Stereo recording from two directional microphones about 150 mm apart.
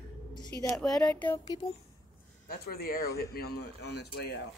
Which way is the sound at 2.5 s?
85° left.